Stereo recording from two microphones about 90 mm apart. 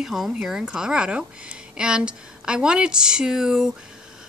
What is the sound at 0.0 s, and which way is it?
A woman's voice, 5° right (ahead or behind).